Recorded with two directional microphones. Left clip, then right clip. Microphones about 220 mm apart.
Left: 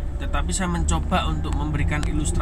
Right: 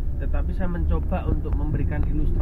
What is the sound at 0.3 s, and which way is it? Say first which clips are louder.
A woman's voice: left 7 dB; 25° left (ahead or behind).